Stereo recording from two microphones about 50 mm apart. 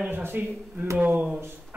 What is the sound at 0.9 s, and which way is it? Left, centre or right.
Speech, right.